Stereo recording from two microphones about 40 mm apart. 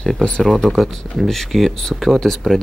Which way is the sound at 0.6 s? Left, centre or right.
Centre.